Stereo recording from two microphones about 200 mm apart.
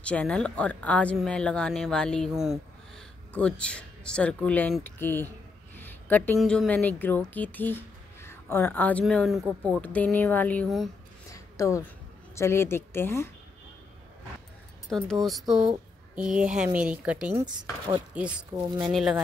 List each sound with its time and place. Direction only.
0.0 s speech: 5° left (ahead or behind)
9.4 s speech: 15° right (ahead or behind)
9.8 s speech: 5° left (ahead or behind)
11.3 s a sound: 15° left (ahead or behind)
12.4 s speech: 10° left (ahead or behind)
14.9 s speech: centre (ahead or behind)
17.7 s speech: 15° left (ahead or behind)
18.1 s speech: 5° right (ahead or behind)